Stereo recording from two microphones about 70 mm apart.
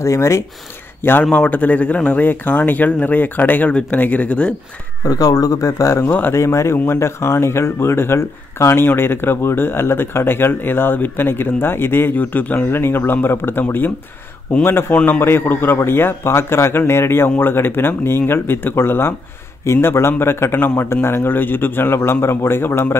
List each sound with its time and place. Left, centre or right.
0.0 s speech: left
1.2 s speech: centre
5.0 s speech: left
6.0 s speech: left
6.3 s speech: left